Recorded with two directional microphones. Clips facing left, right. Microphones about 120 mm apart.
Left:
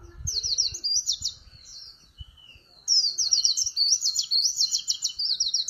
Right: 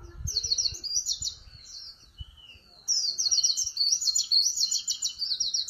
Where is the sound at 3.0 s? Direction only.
75° left (ahead or behind).